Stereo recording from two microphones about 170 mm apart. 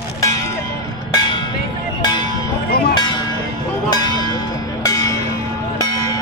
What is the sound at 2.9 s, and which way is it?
Music, 25° left (ahead or behind).